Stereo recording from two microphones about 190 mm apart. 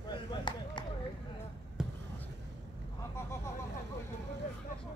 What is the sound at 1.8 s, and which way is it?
Basketball bounce, 5° right (ahead or behind).